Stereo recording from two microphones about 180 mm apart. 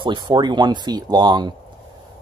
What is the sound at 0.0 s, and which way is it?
Speech, 25° right (ahead or behind).